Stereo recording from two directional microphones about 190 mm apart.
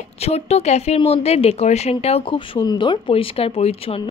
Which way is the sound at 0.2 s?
35° left (ahead or behind).